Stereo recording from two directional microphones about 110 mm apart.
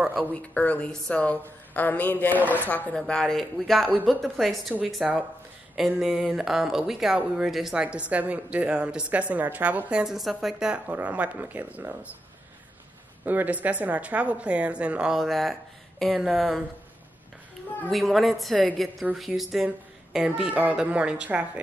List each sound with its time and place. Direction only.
0.3 s speech: 15° left (ahead or behind)
2.4 s a woman's voice: 15° right (ahead or behind)
2.7 s a woman's voice: 10° left (ahead or behind); by 12.1 s 15° right (ahead or behind)
13.2 s a woman's voice: 15° right (ahead or behind); by 16.6 s centre (ahead or behind)
17.8 s a woman's voice: centre (ahead or behind)